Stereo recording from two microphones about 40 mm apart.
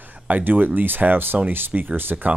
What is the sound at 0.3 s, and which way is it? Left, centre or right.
Speech, right.